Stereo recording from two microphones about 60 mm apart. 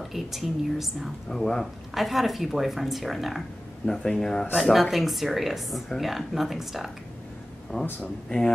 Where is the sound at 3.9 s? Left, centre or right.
Centre.